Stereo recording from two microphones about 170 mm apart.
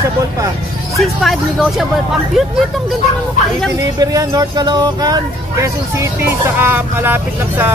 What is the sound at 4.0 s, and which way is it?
Speech, 20° right (ahead or behind).